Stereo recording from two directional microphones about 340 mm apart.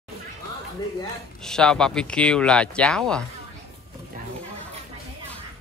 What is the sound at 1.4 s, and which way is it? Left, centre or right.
Speech, centre.